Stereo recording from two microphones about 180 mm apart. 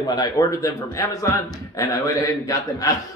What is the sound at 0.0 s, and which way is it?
A man's voice, 20° left (ahead or behind).